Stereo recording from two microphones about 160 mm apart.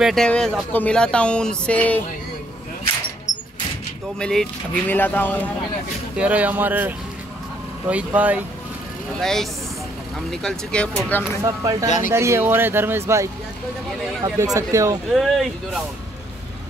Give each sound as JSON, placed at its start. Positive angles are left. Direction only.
{"t": 0.0, "sound": "speech", "side_deg": 5}
{"t": 4.2, "sound": "speech", "side_deg": 5}
{"t": 6.1, "sound": "speech", "side_deg": -10}
{"t": 7.9, "sound": "speech", "side_deg": -10}
{"t": 9.2, "sound": "speech", "side_deg": 5}
{"t": 11.4, "sound": "speech", "side_deg": -20}
{"t": 15.1, "sound": "speech", "side_deg": 0}